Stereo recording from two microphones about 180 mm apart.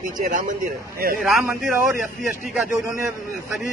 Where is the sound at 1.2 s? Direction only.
Centre (ahead or behind).